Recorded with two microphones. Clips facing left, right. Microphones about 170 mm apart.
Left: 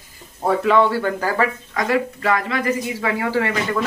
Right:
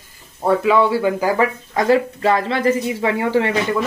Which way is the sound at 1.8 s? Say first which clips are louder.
Right 5 dB; 30° right (ahead or behind).